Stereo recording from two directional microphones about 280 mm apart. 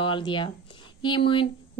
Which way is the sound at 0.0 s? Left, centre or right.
Centre.